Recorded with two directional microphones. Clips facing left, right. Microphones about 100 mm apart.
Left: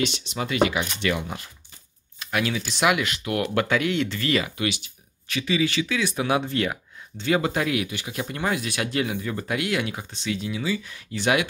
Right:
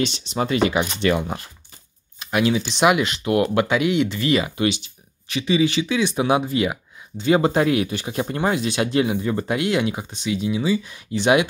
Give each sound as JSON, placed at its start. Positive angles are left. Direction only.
{"t": 0.0, "sound": "speech", "side_deg": -30}
{"t": 2.1, "sound": "speech", "side_deg": -20}
{"t": 7.3, "sound": "speech", "side_deg": -30}